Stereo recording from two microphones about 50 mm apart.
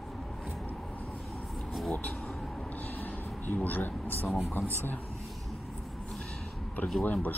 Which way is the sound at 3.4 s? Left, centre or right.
Left.